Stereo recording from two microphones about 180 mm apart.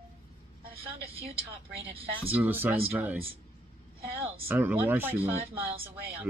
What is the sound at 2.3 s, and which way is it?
Speech, 10° right (ahead or behind).